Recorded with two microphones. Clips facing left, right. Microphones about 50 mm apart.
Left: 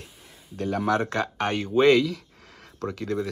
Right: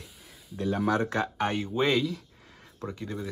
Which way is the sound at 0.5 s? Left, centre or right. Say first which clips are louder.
Left 2 dB; left.